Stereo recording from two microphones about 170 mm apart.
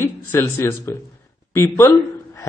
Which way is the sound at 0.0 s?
15° left (ahead or behind).